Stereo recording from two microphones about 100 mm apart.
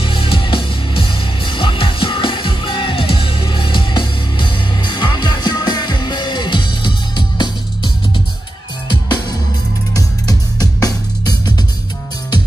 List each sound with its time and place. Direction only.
0.0 s music: 65° left (ahead or behind)
9.9 s music: 35° left (ahead or behind)